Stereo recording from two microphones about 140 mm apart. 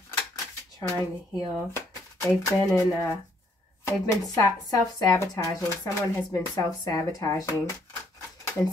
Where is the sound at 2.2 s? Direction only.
Centre (ahead or behind).